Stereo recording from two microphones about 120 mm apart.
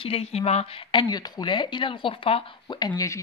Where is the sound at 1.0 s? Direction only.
35° left (ahead or behind).